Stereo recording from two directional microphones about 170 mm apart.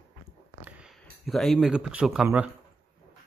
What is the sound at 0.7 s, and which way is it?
Speech, 5° right (ahead or behind).